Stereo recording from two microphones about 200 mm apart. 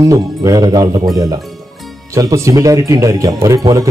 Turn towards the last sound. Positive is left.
turn(degrees=-15)  # may be behind; listen again after turning